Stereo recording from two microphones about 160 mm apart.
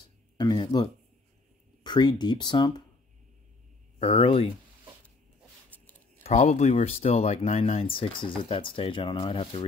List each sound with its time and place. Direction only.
0.0 s a sound: 25° left (ahead or behind)
1.8 s speech: 25° left (ahead or behind)
4.0 s speech: 35° left (ahead or behind)
6.2 s speech: 45° left (ahead or behind)